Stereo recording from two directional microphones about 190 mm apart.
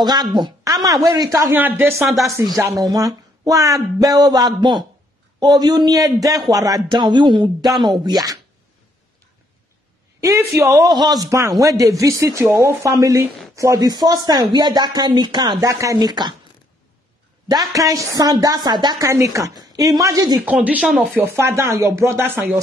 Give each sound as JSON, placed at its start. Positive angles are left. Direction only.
{"t": 0.0, "sound": "speech", "side_deg": -20}
{"t": 2.3, "sound": "speech", "side_deg": -15}
{"t": 7.4, "sound": "speech", "side_deg": 0}
{"t": 8.0, "sound": "speech", "side_deg": -20}
{"t": 10.5, "sound": "speech", "side_deg": -15}
{"t": 17.5, "sound": "speech", "side_deg": -20}
{"t": 20.4, "sound": "speech", "side_deg": -5}
{"t": 21.2, "sound": "speech", "side_deg": -15}